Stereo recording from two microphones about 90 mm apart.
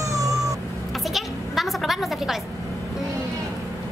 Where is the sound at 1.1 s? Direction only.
Centre (ahead or behind).